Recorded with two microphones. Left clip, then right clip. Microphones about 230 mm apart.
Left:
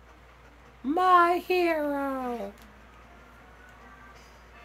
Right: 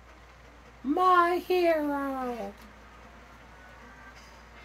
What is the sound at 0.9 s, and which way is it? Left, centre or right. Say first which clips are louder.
Speech: left 2 dB; left.